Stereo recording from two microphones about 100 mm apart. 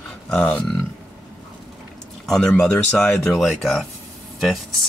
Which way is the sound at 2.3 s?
5° left (ahead or behind).